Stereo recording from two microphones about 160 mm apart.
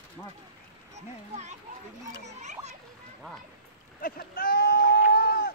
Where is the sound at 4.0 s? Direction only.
70° left (ahead or behind).